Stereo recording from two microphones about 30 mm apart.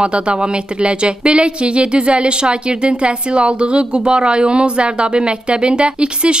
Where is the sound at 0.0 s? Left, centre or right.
Right.